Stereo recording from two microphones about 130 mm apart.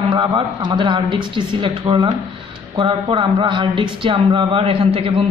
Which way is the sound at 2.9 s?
40° right (ahead or behind).